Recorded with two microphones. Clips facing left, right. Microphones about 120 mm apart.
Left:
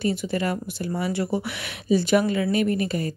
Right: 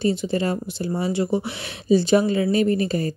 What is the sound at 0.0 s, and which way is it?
Speech, 25° right (ahead or behind).